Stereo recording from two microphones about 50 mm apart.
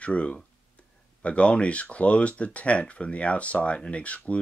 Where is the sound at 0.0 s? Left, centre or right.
Left.